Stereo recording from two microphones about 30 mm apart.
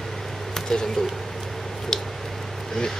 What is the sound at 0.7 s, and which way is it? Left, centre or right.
Speech, centre.